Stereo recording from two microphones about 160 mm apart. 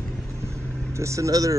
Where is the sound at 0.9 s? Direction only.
20° right (ahead or behind).